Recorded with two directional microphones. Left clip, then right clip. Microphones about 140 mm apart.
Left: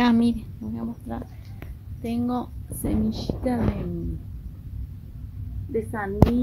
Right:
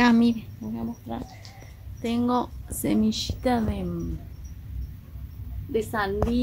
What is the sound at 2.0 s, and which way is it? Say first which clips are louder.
Speech: right 3 dB; 25° right (ahead or behind).